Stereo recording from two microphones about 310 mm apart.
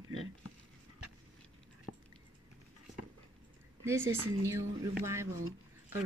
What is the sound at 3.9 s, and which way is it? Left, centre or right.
Speech, centre.